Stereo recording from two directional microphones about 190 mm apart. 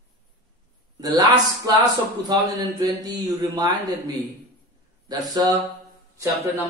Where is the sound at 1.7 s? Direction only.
20° right (ahead or behind).